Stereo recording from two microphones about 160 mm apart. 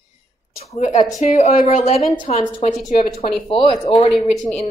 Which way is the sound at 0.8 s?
45° left (ahead or behind).